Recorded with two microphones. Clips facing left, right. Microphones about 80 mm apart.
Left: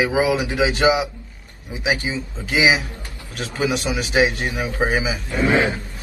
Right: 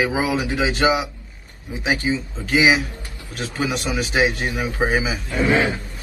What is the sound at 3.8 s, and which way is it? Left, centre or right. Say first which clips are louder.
Speech: even; centre.